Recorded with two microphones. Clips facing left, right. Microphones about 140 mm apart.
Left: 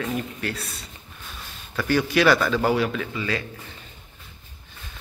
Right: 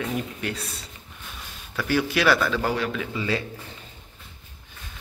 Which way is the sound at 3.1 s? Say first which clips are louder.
Right 1 dB; 25° right (ahead or behind).